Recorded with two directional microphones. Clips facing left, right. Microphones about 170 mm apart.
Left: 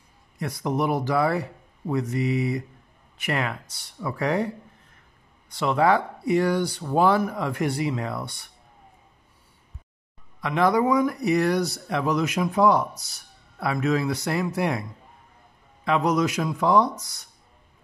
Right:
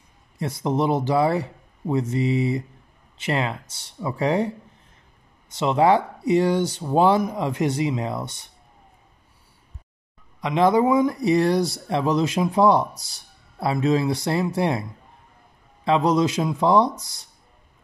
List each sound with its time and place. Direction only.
0.4 s speech: 25° right (ahead or behind)
5.5 s speech: 20° right (ahead or behind)
10.4 s speech: 20° right (ahead or behind)